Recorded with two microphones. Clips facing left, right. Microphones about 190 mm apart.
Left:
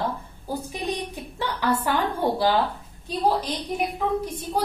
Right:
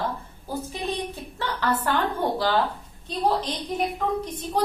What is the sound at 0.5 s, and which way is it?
A woman's voice, 15° left (ahead or behind).